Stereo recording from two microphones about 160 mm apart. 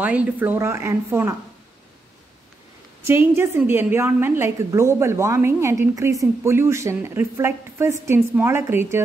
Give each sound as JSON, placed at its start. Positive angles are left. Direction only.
{"t": 0.0, "sound": "a woman's voice", "side_deg": -10}
{"t": 3.0, "sound": "a woman's voice", "side_deg": -15}